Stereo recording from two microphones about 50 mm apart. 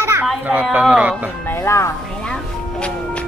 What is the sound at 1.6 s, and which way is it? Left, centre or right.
Speech, left.